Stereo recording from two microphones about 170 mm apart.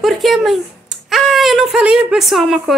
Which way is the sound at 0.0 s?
Centre (ahead or behind).